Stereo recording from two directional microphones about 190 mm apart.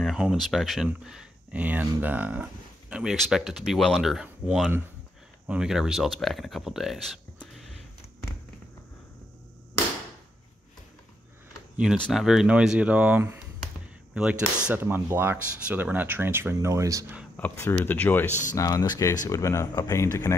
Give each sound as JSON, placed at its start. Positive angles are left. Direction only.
{"t": 0.0, "sound": "speech", "side_deg": -5}
{"t": 11.7, "sound": "speech", "side_deg": -5}
{"t": 14.7, "sound": "speech", "side_deg": -10}
{"t": 17.4, "sound": "speech", "side_deg": 15}